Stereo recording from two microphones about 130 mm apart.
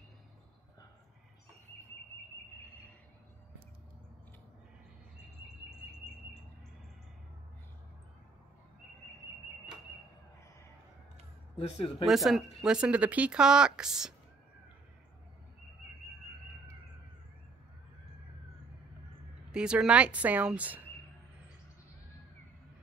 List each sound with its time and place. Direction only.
11.5 s speech: 55° left (ahead or behind)
12.1 s speech: centre (ahead or behind)
19.5 s speech: 5° right (ahead or behind)